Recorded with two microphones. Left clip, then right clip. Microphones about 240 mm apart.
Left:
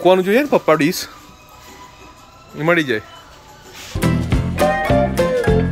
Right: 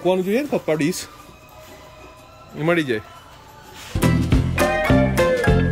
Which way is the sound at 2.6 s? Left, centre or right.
Centre.